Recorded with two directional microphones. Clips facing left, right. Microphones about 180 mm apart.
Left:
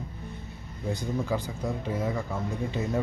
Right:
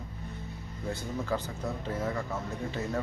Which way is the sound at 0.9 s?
15° left (ahead or behind).